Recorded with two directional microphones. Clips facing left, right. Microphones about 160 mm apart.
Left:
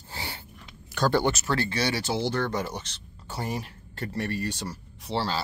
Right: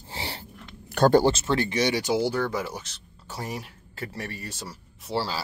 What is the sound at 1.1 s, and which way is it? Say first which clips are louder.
Speech: right 5 dB; 30° right (ahead or behind).